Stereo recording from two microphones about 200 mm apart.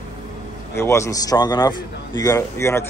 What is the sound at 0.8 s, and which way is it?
A man's voice, 15° left (ahead or behind).